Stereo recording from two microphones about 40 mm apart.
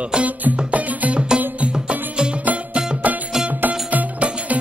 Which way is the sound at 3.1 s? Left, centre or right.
Right.